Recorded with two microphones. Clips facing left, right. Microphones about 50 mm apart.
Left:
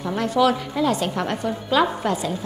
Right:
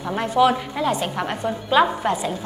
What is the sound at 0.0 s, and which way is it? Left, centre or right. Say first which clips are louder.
A woman's voice: right 1 dB; centre.